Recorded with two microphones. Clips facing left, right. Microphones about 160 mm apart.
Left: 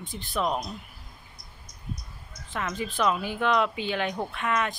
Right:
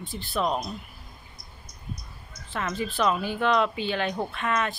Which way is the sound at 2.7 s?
15° left (ahead or behind).